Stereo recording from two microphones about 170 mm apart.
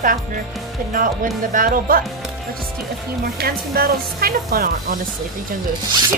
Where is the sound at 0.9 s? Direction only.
50° right (ahead or behind).